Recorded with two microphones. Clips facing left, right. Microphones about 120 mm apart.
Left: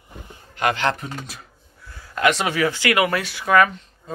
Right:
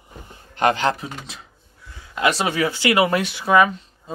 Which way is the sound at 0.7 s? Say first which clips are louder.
Right 1 dB; 15° right (ahead or behind).